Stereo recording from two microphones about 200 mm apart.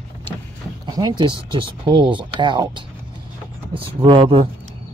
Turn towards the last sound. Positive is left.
turn(degrees=-25)  # may be behind; listen again after turning